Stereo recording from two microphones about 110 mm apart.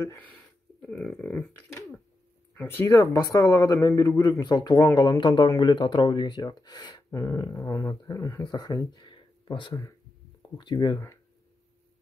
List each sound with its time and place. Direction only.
0.7 s speech: 10° left (ahead or behind)
2.5 s speech: 15° left (ahead or behind)
2.9 s speech: 35° left (ahead or behind)
7.1 s speech: 30° left (ahead or behind); by 11.0 s 45° left (ahead or behind)